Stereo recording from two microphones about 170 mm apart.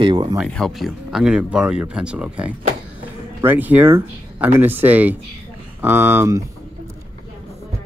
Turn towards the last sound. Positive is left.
turn(degrees=-15)  # may be behind; listen again after turning